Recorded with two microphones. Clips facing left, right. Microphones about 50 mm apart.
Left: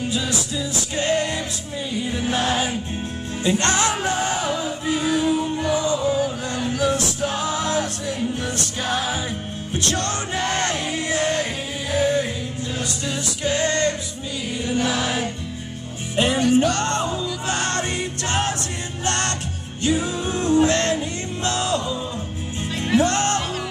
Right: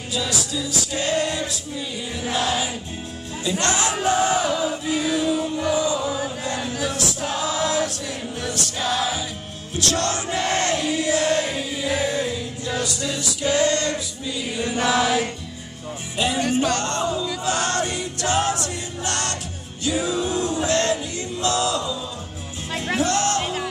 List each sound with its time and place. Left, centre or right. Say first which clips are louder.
0.1 s music: left 1 dB; left
12.8 s music: even; left
14.8 s music: right 4 dB; right
16.2 s music: left 4 dB; left
22.9 s music: left 3 dB; left